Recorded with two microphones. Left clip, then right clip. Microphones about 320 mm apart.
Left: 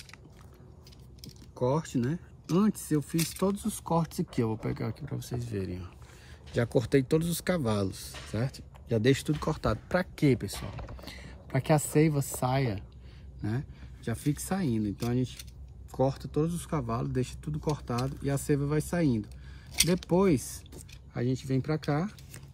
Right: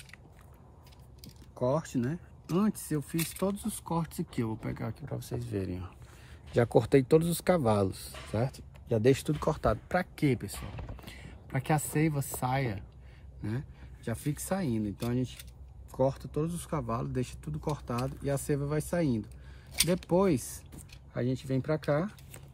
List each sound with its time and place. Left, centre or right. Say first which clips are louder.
1.2 s speech: left 1 dB; centre
3.6 s a woman's voice: left 5 dB; centre